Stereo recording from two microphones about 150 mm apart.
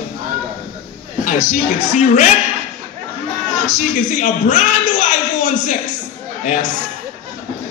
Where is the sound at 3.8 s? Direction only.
55° left (ahead or behind).